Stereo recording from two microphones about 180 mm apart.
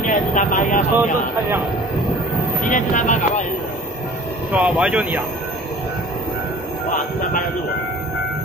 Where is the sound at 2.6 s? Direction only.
45° left (ahead or behind).